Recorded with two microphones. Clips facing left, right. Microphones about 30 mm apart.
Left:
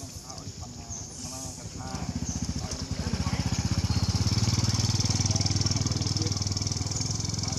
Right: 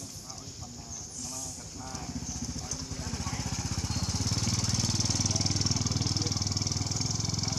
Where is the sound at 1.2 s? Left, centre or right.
Centre.